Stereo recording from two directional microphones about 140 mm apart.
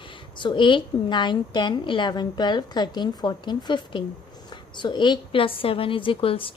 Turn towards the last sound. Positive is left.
turn(degrees=40)  # may be behind; listen again after turning